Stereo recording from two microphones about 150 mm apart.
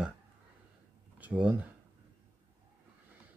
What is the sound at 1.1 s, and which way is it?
Speech, 10° right (ahead or behind).